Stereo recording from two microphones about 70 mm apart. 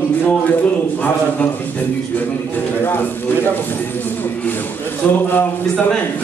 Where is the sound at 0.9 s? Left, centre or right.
Left.